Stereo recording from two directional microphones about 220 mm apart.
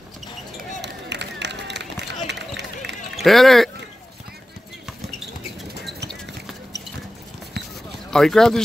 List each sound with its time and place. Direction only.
0.8 s run: 50° right (ahead or behind)
3.2 s speech: centre (ahead or behind)
8.1 s speech: centre (ahead or behind)